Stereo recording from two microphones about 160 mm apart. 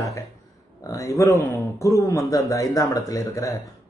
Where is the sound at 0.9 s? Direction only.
20° left (ahead or behind).